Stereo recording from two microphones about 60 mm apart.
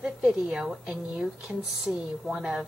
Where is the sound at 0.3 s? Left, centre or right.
Centre.